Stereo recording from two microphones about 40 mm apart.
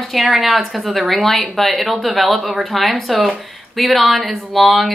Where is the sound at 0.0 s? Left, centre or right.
Centre.